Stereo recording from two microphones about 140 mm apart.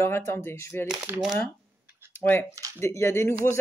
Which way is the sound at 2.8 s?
20° left (ahead or behind).